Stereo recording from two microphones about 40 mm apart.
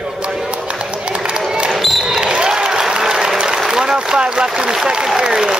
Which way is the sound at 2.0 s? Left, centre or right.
Right.